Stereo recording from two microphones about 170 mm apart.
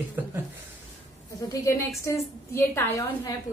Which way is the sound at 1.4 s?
20° left (ahead or behind).